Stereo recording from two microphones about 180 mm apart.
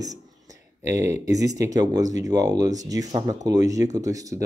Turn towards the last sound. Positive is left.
turn(degrees=-20)  # may be behind; listen again after turning